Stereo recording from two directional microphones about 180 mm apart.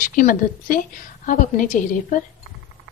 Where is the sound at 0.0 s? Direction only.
50° left (ahead or behind).